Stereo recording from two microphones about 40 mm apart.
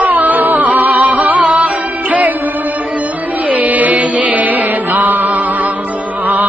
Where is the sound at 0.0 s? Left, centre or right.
Right.